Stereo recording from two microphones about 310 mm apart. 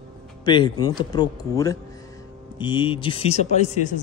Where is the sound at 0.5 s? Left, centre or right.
Centre.